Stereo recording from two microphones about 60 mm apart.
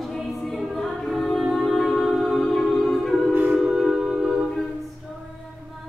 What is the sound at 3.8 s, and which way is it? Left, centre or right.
Music, centre.